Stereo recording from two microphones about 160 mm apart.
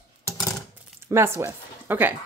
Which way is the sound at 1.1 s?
15° right (ahead or behind).